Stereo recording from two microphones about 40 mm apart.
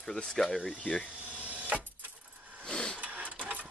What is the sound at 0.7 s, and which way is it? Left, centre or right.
Speech, left.